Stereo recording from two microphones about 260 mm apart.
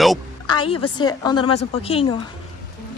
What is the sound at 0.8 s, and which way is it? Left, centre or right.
Speech, centre.